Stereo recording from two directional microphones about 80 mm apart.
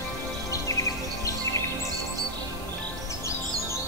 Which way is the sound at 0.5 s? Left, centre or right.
Left.